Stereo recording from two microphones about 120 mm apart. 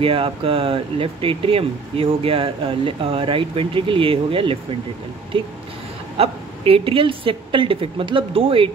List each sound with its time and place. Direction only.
0.0 s speech: 50° right (ahead or behind)